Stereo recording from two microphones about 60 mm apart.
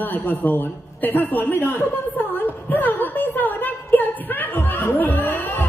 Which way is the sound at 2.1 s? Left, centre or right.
Left.